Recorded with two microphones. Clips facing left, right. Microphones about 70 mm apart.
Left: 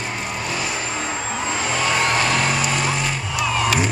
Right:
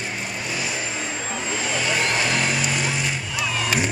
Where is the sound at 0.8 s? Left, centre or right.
Left.